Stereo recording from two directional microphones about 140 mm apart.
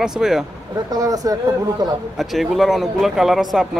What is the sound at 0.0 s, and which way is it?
Speech, 5° right (ahead or behind).